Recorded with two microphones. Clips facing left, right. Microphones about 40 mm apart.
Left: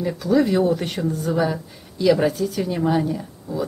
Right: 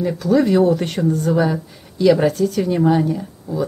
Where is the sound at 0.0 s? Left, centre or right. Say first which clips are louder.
Right 3 dB; centre.